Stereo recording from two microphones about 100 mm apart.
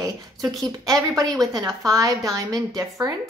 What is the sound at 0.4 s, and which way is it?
Speech, centre (ahead or behind).